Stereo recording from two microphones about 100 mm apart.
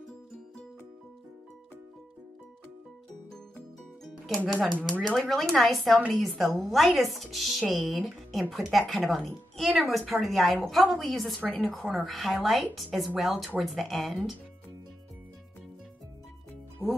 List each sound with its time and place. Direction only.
4.5 s a woman's voice: centre (ahead or behind)
11.4 s a woman's voice: 15° left (ahead or behind)
11.7 s a woman's voice: 5° left (ahead or behind)
16.8 s music: 25° right (ahead or behind)